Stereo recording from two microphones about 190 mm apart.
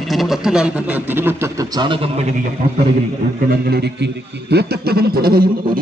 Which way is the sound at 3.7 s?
60° right (ahead or behind).